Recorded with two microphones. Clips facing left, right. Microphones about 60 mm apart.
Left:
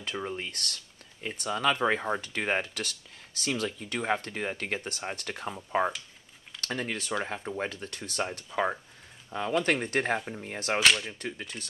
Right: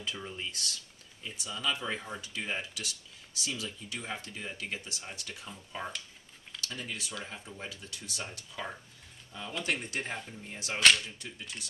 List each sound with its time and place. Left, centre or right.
0.0 s speech: left
10.8 s whip: centre
11.1 s speech: left